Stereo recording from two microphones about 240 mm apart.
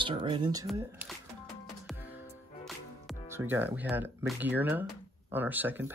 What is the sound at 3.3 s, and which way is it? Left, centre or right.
Speech, centre.